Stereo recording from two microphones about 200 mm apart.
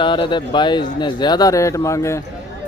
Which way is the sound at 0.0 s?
25° left (ahead or behind).